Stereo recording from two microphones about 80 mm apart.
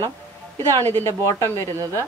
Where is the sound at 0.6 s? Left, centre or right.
Left.